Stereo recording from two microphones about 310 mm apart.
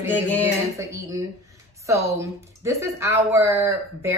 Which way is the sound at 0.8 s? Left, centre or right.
Centre.